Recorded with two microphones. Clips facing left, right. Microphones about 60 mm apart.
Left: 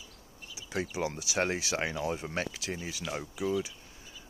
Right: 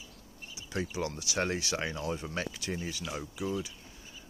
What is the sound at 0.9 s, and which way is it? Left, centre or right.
Speech, centre.